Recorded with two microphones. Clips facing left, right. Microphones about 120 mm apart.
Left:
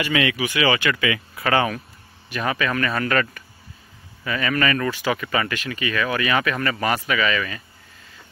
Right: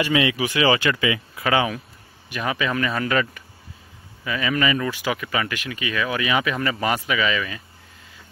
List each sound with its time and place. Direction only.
0.0 s speech: 25° right (ahead or behind)
1.4 s speech: 10° right (ahead or behind)